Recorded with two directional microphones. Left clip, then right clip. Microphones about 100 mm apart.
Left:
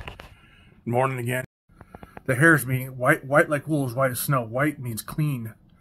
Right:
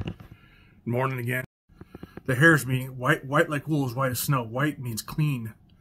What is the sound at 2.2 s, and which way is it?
Speech, 10° right (ahead or behind).